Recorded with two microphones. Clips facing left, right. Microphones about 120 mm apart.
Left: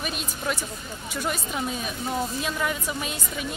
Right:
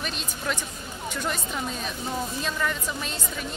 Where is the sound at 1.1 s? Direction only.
10° left (ahead or behind).